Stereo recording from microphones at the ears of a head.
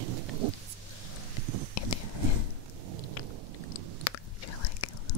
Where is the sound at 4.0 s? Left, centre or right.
Left.